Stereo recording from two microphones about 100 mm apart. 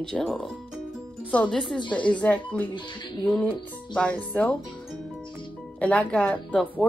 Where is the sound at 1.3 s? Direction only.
15° left (ahead or behind).